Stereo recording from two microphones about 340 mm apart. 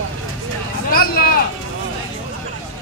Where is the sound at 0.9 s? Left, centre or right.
Left.